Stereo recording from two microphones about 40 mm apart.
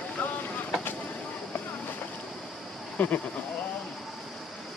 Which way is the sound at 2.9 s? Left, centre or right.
Left.